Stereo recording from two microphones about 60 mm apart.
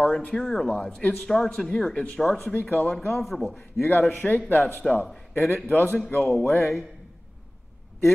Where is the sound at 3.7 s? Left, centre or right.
Left.